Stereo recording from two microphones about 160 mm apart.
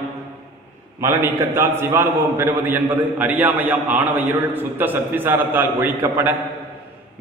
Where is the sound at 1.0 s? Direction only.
15° right (ahead or behind).